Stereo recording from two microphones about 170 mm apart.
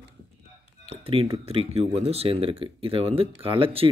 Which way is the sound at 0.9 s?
35° right (ahead or behind).